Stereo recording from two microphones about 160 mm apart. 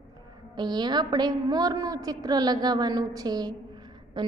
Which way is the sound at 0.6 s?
25° right (ahead or behind).